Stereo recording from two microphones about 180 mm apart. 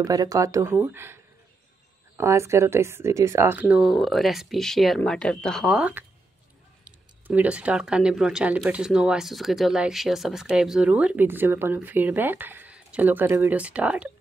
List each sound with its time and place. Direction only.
0.0 s speech: 20° right (ahead or behind)